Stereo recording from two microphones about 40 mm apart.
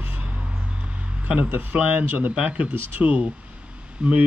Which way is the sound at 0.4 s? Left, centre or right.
Right.